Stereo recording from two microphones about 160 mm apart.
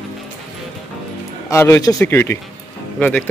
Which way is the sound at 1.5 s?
15° left (ahead or behind).